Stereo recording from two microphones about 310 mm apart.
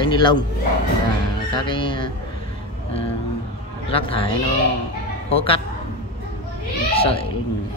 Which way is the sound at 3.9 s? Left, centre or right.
Centre.